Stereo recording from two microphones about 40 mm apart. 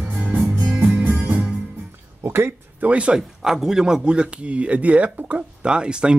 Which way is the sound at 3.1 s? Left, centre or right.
Centre.